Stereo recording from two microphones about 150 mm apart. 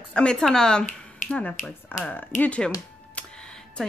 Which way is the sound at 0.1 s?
5° left (ahead or behind).